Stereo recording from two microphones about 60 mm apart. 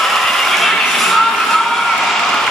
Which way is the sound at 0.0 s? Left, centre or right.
Centre.